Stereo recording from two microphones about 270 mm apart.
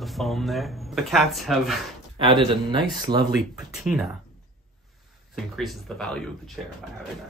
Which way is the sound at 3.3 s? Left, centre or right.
Centre.